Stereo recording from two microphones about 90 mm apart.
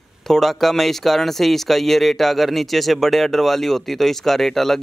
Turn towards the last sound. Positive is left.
turn(degrees=5)  # may be behind; listen again after turning